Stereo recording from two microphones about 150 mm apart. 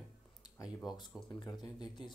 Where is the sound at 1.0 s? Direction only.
30° left (ahead or behind).